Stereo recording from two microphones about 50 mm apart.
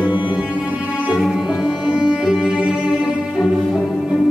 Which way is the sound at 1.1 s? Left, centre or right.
Centre.